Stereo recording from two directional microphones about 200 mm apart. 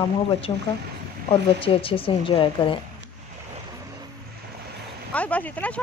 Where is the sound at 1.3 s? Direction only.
25° left (ahead or behind).